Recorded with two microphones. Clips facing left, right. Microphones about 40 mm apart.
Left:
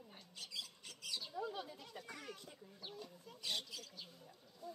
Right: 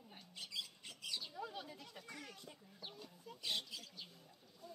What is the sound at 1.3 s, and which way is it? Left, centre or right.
Chicken, centre.